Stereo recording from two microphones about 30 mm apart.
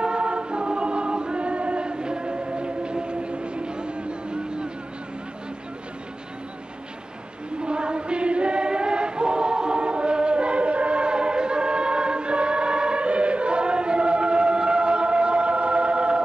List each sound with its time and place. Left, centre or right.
0.0 s choir: right
7.6 s choir: right